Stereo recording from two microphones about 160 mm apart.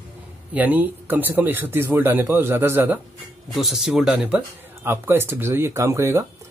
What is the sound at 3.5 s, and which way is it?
Speech, centre (ahead or behind).